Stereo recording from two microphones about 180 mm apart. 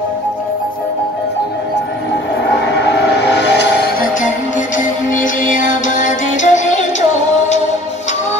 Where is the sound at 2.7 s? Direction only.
70° left (ahead or behind).